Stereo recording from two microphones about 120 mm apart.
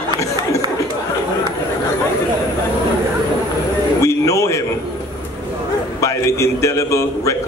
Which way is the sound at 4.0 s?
25° left (ahead or behind).